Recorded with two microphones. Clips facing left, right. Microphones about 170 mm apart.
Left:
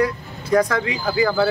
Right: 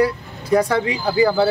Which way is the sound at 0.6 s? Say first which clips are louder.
Right 3 dB; 30° right (ahead or behind).